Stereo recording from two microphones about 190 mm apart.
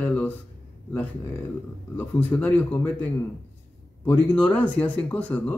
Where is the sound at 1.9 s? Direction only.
10° left (ahead or behind).